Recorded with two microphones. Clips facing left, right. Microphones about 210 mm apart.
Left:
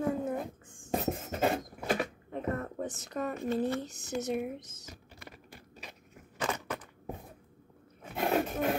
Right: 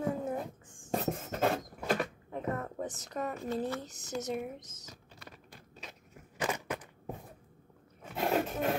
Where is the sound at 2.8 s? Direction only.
25° left (ahead or behind).